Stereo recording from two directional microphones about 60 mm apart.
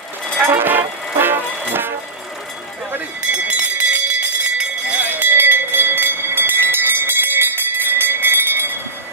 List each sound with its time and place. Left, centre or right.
0.4 s music: right
3.3 s jingle bell: right
5.1 s a sound: right